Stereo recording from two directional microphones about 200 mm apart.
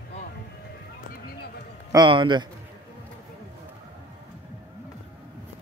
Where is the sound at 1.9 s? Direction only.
20° right (ahead or behind).